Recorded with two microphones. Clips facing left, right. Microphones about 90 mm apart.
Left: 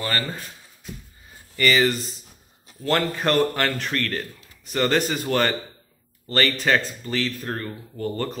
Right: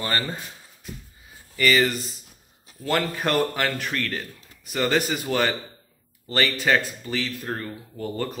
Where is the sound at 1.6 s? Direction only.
Centre (ahead or behind).